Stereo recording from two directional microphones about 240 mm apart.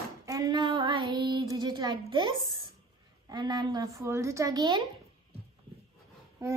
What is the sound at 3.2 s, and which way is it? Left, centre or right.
A woman's voice, centre.